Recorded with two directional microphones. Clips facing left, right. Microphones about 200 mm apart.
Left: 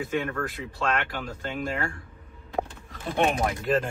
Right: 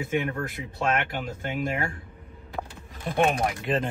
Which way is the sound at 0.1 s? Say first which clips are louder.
Right 1 dB; 20° right (ahead or behind).